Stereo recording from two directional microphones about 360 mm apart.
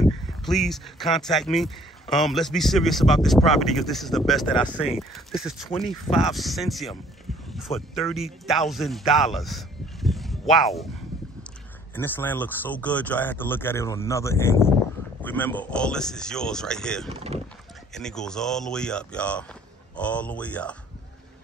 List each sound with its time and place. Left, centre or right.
0.0 s speech: centre
11.9 s speech: centre
17.1 s speech: centre
17.9 s speech: centre